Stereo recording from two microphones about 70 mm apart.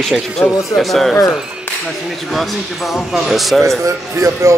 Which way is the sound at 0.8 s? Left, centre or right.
Centre.